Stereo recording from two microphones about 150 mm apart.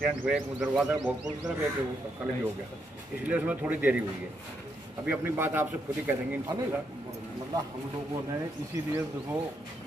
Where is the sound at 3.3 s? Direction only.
10° right (ahead or behind).